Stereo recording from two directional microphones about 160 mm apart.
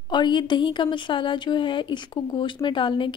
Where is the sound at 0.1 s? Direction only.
30° left (ahead or behind).